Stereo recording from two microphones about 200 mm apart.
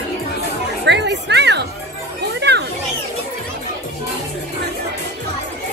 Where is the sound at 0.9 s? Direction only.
60° right (ahead or behind).